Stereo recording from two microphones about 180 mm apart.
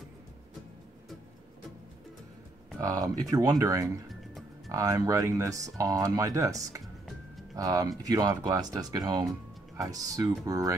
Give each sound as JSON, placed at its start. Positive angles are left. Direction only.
{"t": 2.8, "sound": "speech", "side_deg": -20}
{"t": 4.1, "sound": "music", "side_deg": 0}
{"t": 4.6, "sound": "speech", "side_deg": -20}